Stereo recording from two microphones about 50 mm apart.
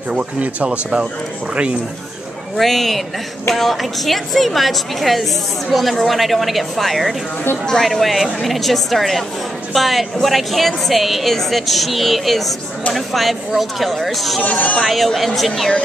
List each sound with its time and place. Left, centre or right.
0.4 s speech: right
2.5 s a woman's voice: centre